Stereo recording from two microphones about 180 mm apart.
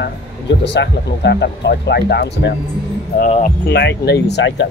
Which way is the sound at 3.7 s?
65° left (ahead or behind).